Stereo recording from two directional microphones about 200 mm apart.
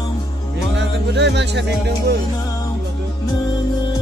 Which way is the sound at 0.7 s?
60° right (ahead or behind).